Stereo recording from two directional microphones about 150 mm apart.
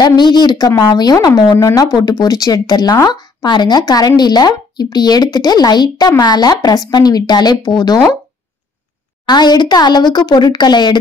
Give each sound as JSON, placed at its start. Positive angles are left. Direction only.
{"t": 0.0, "sound": "speech", "side_deg": 30}
{"t": 9.2, "sound": "speech", "side_deg": 30}